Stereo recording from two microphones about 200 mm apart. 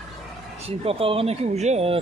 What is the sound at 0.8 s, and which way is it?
Speech, 30° right (ahead or behind).